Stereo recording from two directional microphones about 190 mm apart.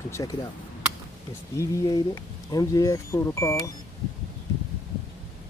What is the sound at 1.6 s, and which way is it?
Speech, 20° left (ahead or behind).